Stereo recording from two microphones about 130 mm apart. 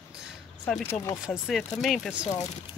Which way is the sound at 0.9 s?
25° left (ahead or behind).